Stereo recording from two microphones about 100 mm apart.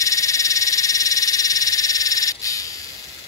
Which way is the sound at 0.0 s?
35° left (ahead or behind).